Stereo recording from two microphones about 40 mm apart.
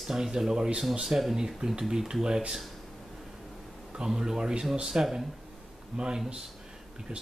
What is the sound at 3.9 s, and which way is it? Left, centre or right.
Speech, centre.